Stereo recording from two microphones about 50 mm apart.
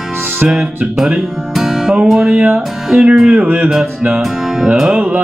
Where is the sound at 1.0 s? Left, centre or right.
Centre.